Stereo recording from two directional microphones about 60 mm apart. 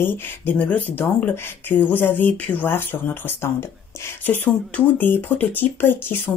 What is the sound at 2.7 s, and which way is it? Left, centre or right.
Speech, left.